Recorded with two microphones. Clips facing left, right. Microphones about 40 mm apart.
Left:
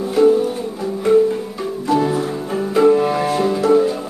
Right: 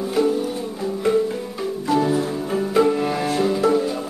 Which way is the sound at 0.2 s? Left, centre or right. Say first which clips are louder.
Left 8 dB; centre.